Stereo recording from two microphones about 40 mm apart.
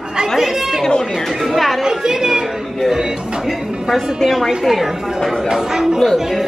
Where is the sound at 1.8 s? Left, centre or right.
Centre.